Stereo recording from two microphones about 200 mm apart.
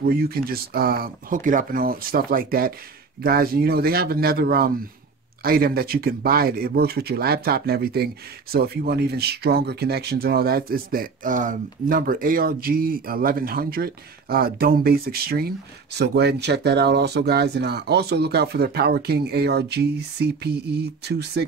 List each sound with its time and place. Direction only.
0.1 s speech: 50° right (ahead or behind)